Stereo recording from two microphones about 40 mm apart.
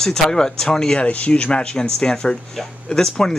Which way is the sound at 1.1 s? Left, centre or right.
Left.